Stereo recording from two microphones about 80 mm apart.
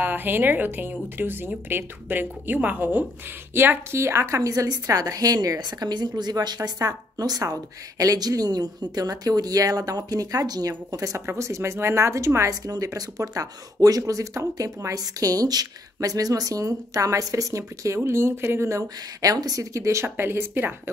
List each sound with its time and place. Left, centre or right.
0.0 s a woman's voice: right
12.6 s speech: right